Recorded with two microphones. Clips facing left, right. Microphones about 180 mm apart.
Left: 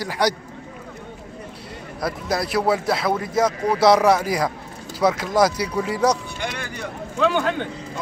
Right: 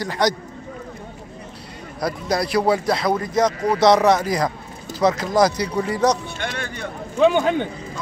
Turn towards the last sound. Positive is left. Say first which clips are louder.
# right 4 dB
turn(degrees=-15)  # may be behind; listen again after turning